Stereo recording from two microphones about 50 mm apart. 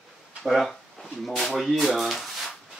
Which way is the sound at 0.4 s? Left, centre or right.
Centre.